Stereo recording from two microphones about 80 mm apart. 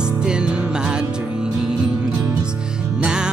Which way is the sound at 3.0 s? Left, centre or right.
Centre.